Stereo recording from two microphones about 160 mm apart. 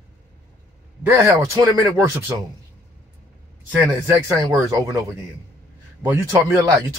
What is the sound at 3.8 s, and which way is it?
Speech, 15° right (ahead or behind).